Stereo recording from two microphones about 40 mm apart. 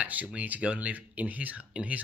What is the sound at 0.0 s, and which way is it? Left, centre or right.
Speech, right.